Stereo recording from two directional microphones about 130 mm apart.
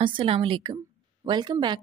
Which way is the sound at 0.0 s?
45° right (ahead or behind).